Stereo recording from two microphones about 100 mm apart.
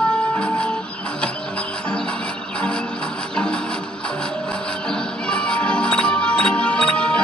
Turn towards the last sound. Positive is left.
turn(degrees=10)  # may be behind; listen again after turning